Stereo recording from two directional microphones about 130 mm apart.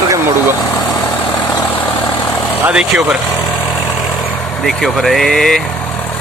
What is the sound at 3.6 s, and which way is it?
Vehicle, 35° left (ahead or behind).